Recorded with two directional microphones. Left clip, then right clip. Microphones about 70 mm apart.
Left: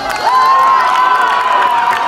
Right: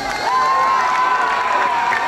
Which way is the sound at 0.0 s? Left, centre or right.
Left.